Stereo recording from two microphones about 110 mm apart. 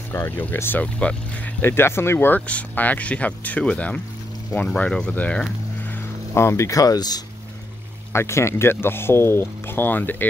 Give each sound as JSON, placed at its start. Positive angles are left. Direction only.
{"t": 0.1, "sound": "speech", "side_deg": 20}
{"t": 6.3, "sound": "speech", "side_deg": 25}
{"t": 8.1, "sound": "speech", "side_deg": 25}